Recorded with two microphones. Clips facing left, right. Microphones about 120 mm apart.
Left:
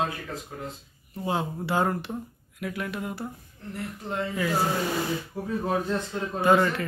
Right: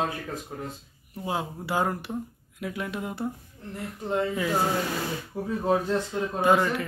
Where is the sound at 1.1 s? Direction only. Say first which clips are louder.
Left 2 dB; 5° right (ahead or behind).